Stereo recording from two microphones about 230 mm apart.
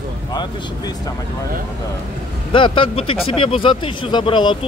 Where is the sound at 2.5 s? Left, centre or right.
Left.